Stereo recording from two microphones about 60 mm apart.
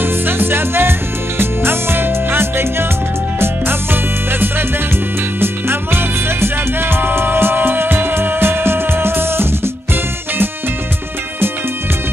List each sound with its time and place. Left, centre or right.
0.0 s music: right